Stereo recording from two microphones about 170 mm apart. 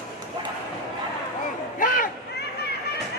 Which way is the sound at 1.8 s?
55° left (ahead or behind).